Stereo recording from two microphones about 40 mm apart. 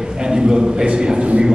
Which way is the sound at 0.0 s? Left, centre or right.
Centre.